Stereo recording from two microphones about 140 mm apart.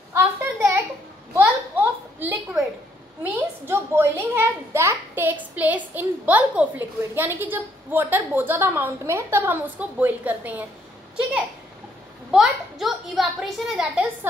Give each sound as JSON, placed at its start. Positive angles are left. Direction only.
{"t": 0.1, "sound": "a sound", "side_deg": -15}
{"t": 3.2, "sound": "a child's voice", "side_deg": -15}
{"t": 12.3, "sound": "a child's voice", "side_deg": 0}